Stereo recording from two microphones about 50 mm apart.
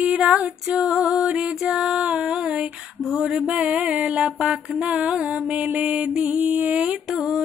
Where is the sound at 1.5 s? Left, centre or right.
Centre.